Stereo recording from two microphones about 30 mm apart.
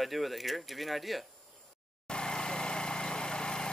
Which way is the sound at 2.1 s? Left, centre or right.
Left.